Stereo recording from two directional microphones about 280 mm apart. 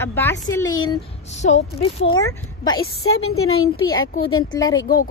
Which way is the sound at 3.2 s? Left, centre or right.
Left.